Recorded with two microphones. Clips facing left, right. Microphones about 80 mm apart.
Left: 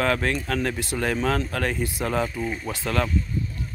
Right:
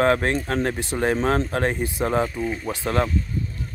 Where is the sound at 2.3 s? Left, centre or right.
Centre.